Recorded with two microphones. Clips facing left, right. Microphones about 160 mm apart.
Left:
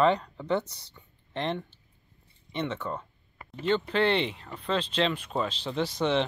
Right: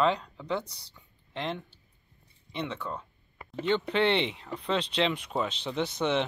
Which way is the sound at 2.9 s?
Centre (ahead or behind).